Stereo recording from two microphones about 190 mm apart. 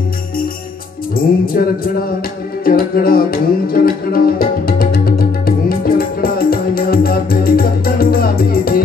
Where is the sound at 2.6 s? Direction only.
50° left (ahead or behind).